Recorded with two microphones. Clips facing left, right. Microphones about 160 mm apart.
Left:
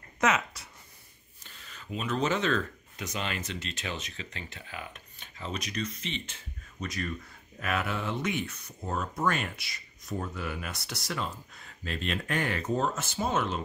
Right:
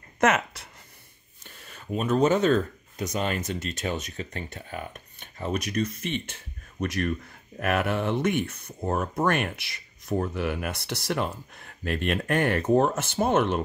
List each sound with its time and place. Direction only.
1.4 s speech: 50° right (ahead or behind)